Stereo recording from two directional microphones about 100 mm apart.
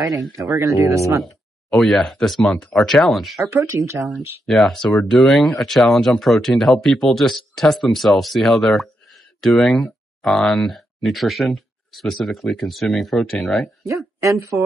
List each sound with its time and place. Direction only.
0.4 s speech: 35° right (ahead or behind)
1.1 s speech: centre (ahead or behind)
3.6 s speech: 30° right (ahead or behind)
4.0 s speech: centre (ahead or behind)
14.2 s speech: 35° right (ahead or behind)